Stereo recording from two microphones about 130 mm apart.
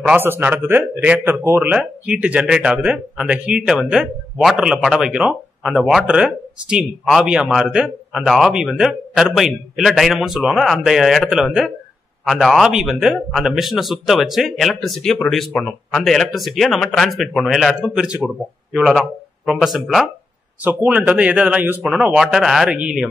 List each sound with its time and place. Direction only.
0.0 s speech: 15° right (ahead or behind)